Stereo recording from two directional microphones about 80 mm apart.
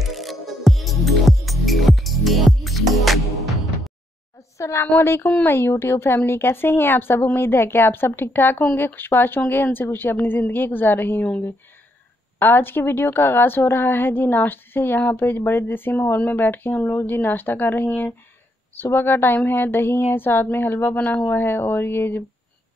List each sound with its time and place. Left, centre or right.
0.0 s music: centre
4.6 s a sound: left
4.9 s a woman's voice: left
12.4 s a woman's voice: left